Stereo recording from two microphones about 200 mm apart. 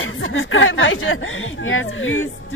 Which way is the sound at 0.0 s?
85° left.